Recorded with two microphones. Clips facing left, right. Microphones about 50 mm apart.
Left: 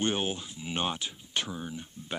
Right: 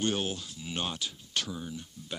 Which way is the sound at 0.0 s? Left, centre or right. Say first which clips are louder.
Left 1 dB; left.